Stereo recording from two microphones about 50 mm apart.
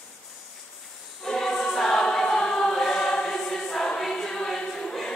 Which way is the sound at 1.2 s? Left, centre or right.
Centre.